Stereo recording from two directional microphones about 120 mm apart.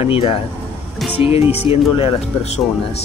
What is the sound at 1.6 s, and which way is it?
Speech, 55° left (ahead or behind).